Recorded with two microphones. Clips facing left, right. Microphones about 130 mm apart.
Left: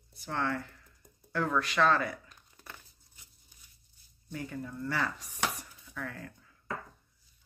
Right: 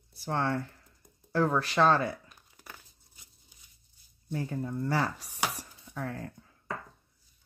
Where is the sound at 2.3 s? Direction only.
10° right (ahead or behind).